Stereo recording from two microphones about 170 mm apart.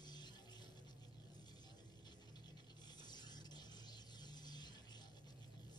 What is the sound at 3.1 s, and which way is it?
Mechanisms, 25° left (ahead or behind).